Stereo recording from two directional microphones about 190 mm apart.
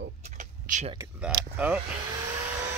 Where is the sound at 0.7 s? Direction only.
40° right (ahead or behind).